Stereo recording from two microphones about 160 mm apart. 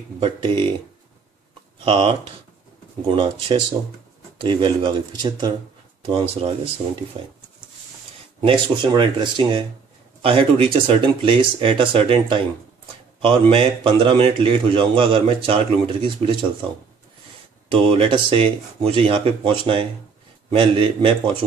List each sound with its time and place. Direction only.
0.2 s speech: 30° right (ahead or behind)
1.9 s speech: 30° right (ahead or behind)
8.4 s speech: 35° right (ahead or behind)
17.6 s speech: 35° right (ahead or behind)